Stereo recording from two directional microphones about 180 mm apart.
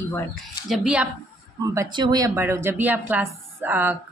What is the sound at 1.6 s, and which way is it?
Speech, 20° right (ahead or behind).